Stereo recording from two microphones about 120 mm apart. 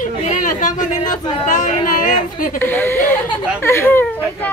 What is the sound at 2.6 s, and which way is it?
Speech, 20° left (ahead or behind).